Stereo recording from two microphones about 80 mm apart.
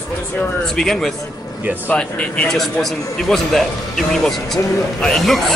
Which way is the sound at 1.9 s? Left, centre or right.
Centre.